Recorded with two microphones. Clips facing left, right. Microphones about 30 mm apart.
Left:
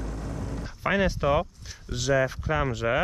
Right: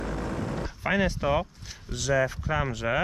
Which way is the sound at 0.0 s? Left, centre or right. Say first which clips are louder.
Right 4 dB; right.